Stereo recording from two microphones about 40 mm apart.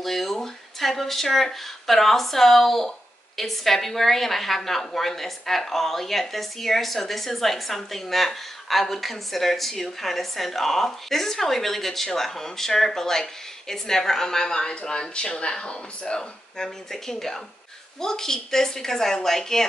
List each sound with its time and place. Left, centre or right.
0.0 s a woman's voice: centre